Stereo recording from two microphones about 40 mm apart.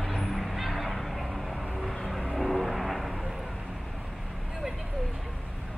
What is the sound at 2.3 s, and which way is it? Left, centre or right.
Vehicle, centre.